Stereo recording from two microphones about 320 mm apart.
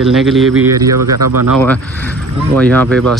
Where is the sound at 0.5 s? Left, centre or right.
Right.